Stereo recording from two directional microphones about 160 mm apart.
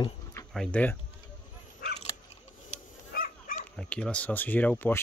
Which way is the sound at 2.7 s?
55° left (ahead or behind).